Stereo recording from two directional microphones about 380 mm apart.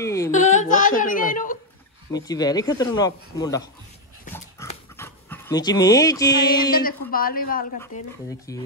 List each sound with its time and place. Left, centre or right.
0.0 s speech: centre
0.3 s a woman's voice: centre
2.1 s speech: centre
4.3 s dog: centre
6.4 s music: left
8.3 s speech: centre